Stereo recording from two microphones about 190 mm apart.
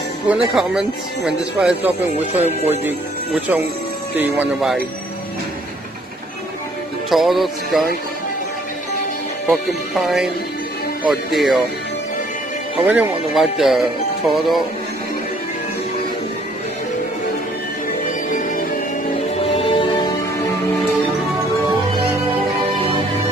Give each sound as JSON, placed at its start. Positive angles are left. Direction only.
{"t": 0.3, "sound": "speech", "side_deg": -5}
{"t": 4.2, "sound": "speech", "side_deg": -5}
{"t": 7.1, "sound": "speech", "side_deg": 0}
{"t": 9.5, "sound": "speech", "side_deg": 0}
{"t": 12.8, "sound": "speech", "side_deg": -10}
{"t": 18.0, "sound": "music", "side_deg": 45}
{"t": 19.1, "sound": "music", "side_deg": 30}